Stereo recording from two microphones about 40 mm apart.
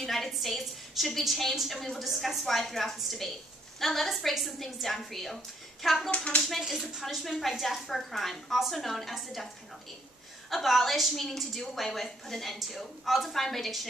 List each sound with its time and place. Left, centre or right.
0.0 s a woman's voice: centre
6.0 s speech: left
7.0 s a woman's voice: centre
10.5 s a woman's voice: centre